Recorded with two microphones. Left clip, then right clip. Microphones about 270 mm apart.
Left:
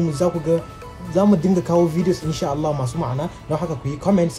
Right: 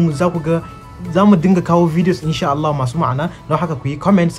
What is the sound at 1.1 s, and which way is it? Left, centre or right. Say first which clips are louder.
Speech: right 4 dB; right.